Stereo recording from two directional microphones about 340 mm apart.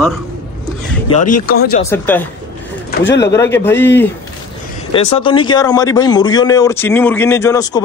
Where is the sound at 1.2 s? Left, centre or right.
Left.